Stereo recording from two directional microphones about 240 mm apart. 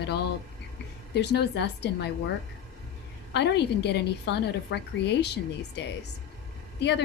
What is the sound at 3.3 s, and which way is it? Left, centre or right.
A woman's voice, left.